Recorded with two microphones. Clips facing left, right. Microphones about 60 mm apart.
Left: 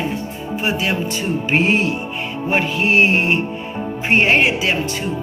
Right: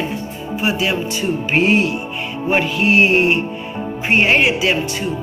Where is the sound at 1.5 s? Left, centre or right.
Left.